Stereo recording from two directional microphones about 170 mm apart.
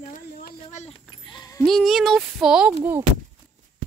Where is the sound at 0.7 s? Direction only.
40° left (ahead or behind); by 1.6 s 25° left (ahead or behind).